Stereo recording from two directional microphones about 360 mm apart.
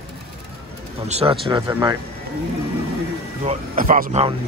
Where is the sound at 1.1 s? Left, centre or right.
Centre.